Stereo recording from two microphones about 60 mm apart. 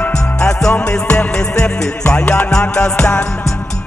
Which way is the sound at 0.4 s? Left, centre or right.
Centre.